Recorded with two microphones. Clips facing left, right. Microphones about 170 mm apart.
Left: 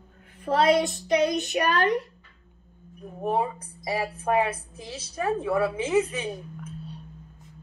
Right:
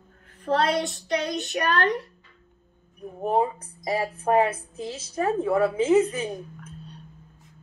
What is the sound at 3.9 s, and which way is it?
Speech, 30° right (ahead or behind).